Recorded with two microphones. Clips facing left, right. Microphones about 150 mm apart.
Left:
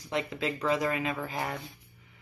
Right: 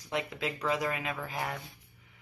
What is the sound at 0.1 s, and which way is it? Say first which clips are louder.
Speech: left 3 dB; 10° right (ahead or behind).